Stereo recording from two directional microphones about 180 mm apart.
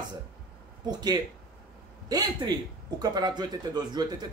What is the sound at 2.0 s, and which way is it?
A man's voice, 20° right (ahead or behind).